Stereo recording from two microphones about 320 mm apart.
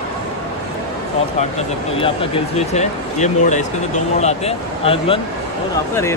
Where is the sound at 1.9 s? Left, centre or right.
Centre.